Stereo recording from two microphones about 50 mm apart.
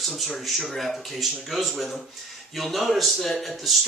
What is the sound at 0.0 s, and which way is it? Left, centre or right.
Speech, centre.